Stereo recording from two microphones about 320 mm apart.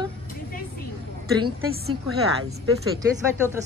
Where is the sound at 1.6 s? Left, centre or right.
Right.